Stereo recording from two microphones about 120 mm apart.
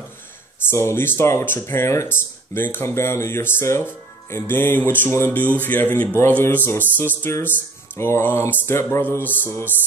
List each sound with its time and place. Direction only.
0.7 s speech: 20° left (ahead or behind)
5.6 s a sound: 15° left (ahead or behind)
8.9 s speech: 20° left (ahead or behind)